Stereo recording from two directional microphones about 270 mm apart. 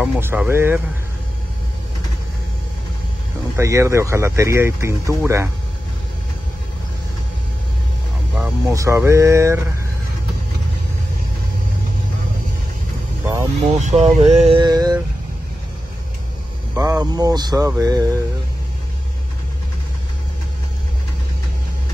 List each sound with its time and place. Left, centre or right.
0.0 s speech: centre
3.5 s speech: centre
8.4 s speech: centre
13.2 s vehicle: centre
13.7 s speech: right
16.7 s speech: centre